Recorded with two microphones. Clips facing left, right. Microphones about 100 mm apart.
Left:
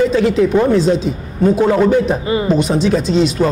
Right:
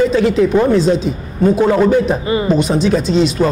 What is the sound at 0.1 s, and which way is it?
A man's voice, 5° left (ahead or behind).